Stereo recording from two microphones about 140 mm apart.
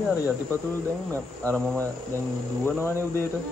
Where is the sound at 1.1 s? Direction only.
15° left (ahead or behind).